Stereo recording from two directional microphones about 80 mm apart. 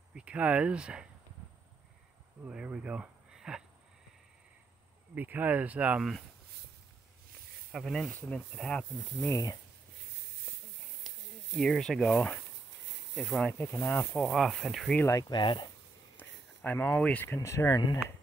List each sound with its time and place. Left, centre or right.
0.1 s speech: centre
2.5 s speech: centre
5.1 s speech: right
7.7 s speech: centre
9.3 s speech: left
11.1 s snake: centre
12.1 s speech: centre
13.8 s speech: left
14.2 s speech: centre
15.0 s speech: left
15.3 s speech: left
16.2 s a sound: left
17.3 s speech: left